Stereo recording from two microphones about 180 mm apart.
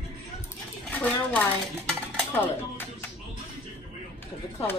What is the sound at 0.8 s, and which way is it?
Speech, 10° left (ahead or behind).